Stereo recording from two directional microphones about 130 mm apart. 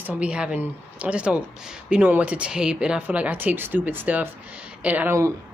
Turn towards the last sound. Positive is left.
turn(degrees=-15)  # may be behind; listen again after turning